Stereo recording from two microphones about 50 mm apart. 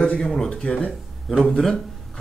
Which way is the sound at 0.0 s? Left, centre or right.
Centre.